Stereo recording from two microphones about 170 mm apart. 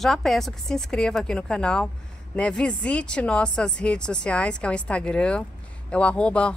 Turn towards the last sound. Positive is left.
turn(degrees=5)  # may be behind; listen again after turning